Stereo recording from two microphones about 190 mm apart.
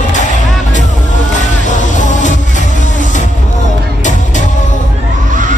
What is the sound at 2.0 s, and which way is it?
Music, 40° left (ahead or behind).